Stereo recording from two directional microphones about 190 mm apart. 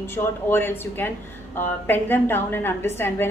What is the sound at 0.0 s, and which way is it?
A woman's voice, 10° left (ahead or behind).